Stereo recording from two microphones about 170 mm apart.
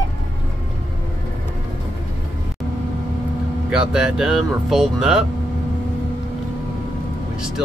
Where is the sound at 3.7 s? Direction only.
5° right (ahead or behind).